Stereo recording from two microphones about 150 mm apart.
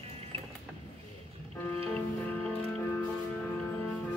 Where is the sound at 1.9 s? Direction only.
5° left (ahead or behind).